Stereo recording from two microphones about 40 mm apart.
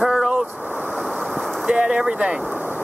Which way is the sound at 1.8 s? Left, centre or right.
Centre.